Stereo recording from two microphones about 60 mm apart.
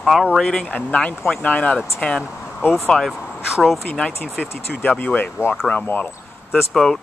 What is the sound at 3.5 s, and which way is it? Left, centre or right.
Speech, centre.